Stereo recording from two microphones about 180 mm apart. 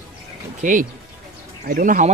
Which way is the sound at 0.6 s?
45° right (ahead or behind).